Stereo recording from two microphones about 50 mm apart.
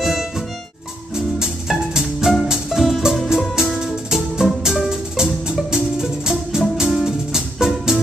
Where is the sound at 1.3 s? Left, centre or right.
Centre.